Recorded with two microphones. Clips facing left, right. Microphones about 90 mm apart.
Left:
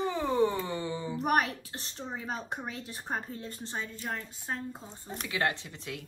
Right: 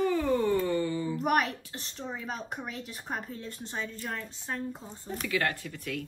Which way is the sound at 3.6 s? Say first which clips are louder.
Right 1 dB; 20° left (ahead or behind).